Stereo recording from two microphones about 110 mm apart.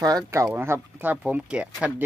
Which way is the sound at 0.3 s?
30° right (ahead or behind).